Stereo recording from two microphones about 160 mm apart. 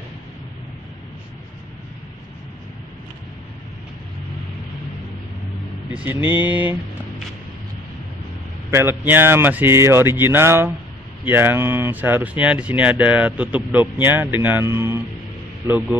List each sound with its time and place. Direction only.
5.9 s vehicle: 10° right (ahead or behind)
6.1 s speech: 15° right (ahead or behind)
8.6 s speech: 15° right (ahead or behind)